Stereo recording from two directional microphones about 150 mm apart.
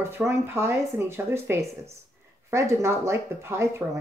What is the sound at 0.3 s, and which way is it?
Speech, 15° right (ahead or behind).